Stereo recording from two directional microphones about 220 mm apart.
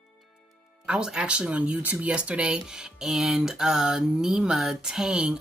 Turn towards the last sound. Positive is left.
turn(degrees=-5)  # may be behind; listen again after turning